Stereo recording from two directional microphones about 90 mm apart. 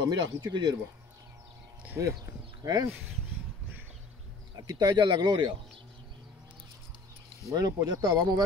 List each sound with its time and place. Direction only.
0.0 s speech: 45° right (ahead or behind)
2.6 s speech: 40° right (ahead or behind)
4.6 s speech: 45° right (ahead or behind)
7.4 s speech: 45° right (ahead or behind)